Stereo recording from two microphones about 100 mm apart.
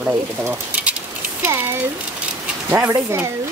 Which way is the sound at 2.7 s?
20° right (ahead or behind).